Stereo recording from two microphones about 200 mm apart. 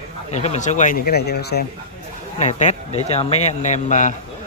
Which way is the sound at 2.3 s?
35° left (ahead or behind).